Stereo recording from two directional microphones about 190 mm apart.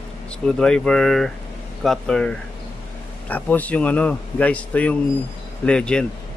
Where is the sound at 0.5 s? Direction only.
5° left (ahead or behind).